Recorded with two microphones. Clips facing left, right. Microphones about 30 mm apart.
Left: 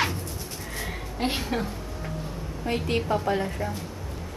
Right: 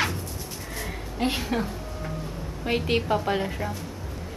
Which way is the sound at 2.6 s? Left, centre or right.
Right.